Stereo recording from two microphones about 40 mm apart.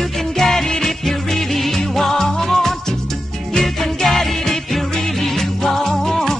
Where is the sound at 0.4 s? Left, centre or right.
Centre.